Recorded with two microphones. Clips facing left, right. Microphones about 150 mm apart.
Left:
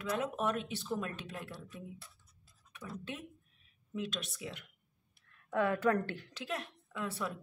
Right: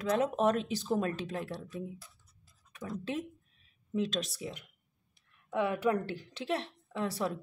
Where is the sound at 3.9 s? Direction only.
35° right (ahead or behind).